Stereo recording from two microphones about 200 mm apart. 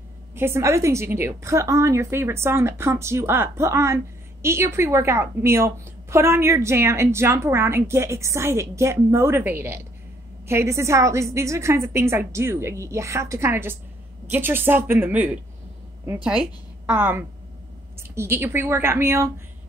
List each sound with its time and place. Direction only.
0.3 s a woman's voice: 10° right (ahead or behind)